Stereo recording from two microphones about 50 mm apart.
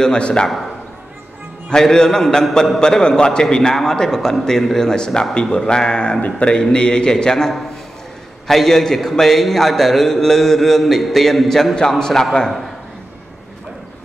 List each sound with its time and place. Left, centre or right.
0.0 s a man's voice: centre
1.7 s a man's voice: centre